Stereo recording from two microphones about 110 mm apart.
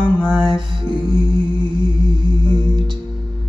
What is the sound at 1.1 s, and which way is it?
Music, 50° right (ahead or behind).